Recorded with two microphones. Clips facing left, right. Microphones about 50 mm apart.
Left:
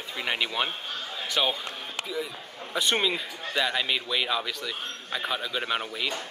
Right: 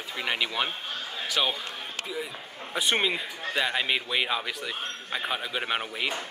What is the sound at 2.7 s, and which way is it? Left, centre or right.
A man's voice, centre.